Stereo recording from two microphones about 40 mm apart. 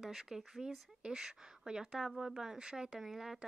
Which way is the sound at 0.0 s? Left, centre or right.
Centre.